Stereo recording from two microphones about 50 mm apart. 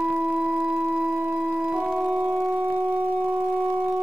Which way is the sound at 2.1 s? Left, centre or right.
Right.